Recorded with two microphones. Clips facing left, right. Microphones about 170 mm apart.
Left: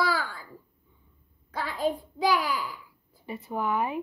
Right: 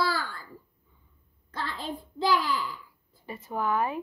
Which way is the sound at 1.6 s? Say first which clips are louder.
Left 6 dB; 10° left (ahead or behind).